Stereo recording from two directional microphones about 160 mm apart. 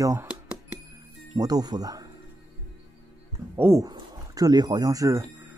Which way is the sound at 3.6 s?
20° right (ahead or behind).